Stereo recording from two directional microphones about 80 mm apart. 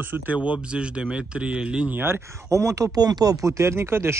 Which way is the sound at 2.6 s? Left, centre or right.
Right.